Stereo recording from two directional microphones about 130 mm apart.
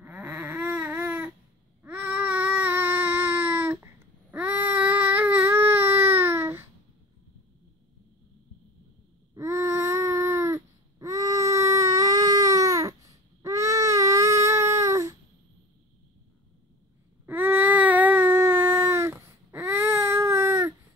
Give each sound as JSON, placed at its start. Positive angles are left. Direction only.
{"t": 0.0, "sound": "a sound", "side_deg": -10}
{"t": 1.8, "sound": "child singing", "side_deg": -15}
{"t": 9.3, "sound": "baby cry", "side_deg": -25}
{"t": 17.3, "sound": "baby cry", "side_deg": -15}